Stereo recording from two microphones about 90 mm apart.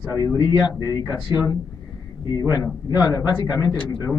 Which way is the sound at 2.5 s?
45° left (ahead or behind).